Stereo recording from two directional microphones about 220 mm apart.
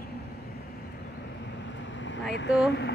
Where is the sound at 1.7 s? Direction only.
55° left (ahead or behind).